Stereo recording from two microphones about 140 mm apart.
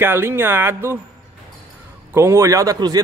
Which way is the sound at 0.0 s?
15° right (ahead or behind).